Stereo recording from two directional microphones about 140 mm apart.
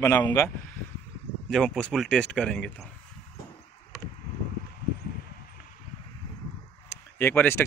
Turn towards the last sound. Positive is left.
turn(degrees=15)  # may be behind; listen again after turning